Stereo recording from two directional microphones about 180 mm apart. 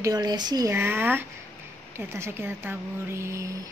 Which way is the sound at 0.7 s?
10° right (ahead or behind).